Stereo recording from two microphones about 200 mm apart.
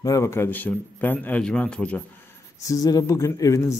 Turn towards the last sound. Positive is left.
turn(degrees=15)  # may be behind; listen again after turning